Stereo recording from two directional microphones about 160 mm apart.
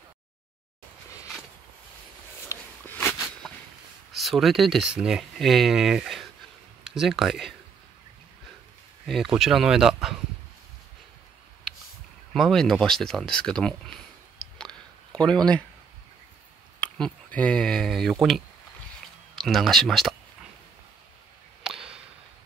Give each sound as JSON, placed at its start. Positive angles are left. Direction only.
{"t": 2.4, "sound": "a sound", "side_deg": 15}
{"t": 4.1, "sound": "speech", "side_deg": 0}
{"t": 9.0, "sound": "speech", "side_deg": 0}
{"t": 12.4, "sound": "speech", "side_deg": 0}
{"t": 16.8, "sound": "speech", "side_deg": 10}
{"t": 21.6, "sound": "whip", "side_deg": -5}